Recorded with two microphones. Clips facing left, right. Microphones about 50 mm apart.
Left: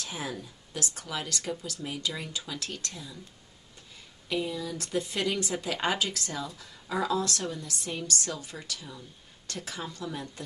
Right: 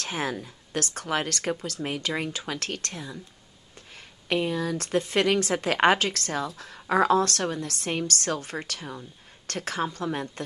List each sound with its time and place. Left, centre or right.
0.0 s speech: right